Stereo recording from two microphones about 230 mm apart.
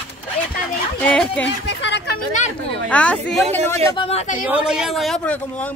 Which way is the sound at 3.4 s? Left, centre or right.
Right.